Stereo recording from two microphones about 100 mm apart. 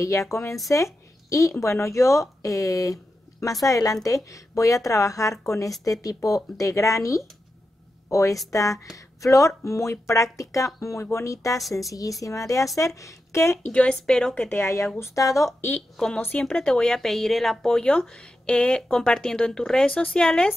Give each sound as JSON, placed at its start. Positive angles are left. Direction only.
{"t": 0.0, "sound": "a woman's voice", "side_deg": 30}
{"t": 13.7, "sound": "speech", "side_deg": 10}
{"t": 14.4, "sound": "a woman's voice", "side_deg": 20}
{"t": 16.2, "sound": "speech", "side_deg": 15}